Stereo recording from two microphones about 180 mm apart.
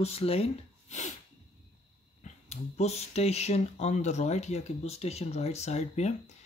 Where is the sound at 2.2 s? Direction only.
35° left (ahead or behind).